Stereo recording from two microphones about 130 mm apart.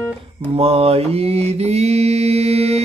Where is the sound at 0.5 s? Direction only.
50° right (ahead or behind).